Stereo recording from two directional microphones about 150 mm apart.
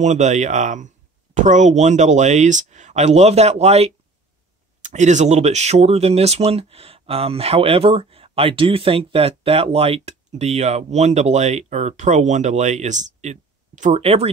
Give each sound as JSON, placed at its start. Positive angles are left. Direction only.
{"t": 0.0, "sound": "speech", "side_deg": -50}